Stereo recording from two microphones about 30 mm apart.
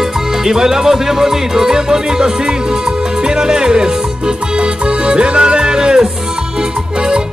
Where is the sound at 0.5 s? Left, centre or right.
Centre.